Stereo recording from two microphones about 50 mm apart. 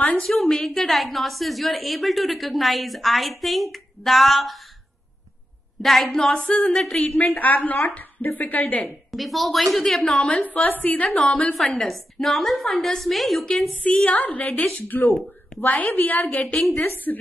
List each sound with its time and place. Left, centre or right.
0.2 s a woman's voice: centre
5.8 s a woman's voice: centre
7.1 s a woman's voice: left
8.8 s a woman's voice: centre
10.0 s a woman's voice: centre
10.4 s a woman's voice: left
11.5 s a woman's voice: centre
13.8 s a woman's voice: left
16.3 s a woman's voice: left
16.9 s a woman's voice: left